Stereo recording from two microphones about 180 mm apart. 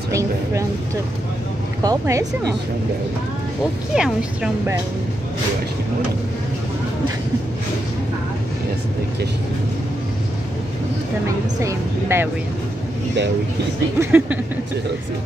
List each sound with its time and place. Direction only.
0.1 s speech: 15° right (ahead or behind)
1.8 s speech: 20° right (ahead or behind)
3.9 s a woman's voice: 5° right (ahead or behind)
11.2 s speech: 15° right (ahead or behind)
13.9 s speech: 10° right (ahead or behind)